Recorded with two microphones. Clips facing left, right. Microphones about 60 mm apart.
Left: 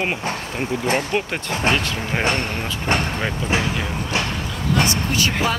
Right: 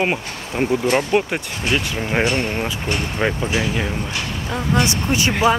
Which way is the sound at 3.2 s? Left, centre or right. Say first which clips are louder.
Right 5 dB; centre.